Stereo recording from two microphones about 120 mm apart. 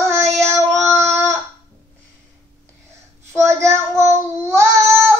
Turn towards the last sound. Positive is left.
turn(degrees=-20)  # may be behind; listen again after turning